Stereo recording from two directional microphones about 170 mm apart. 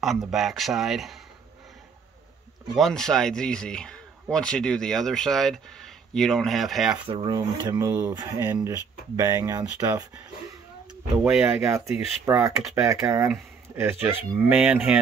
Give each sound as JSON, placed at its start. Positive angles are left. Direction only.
{"t": 0.0, "sound": "speech", "side_deg": 0}
{"t": 2.7, "sound": "speech", "side_deg": 0}
{"t": 7.1, "sound": "speech", "side_deg": -25}
{"t": 11.2, "sound": "speech", "side_deg": -5}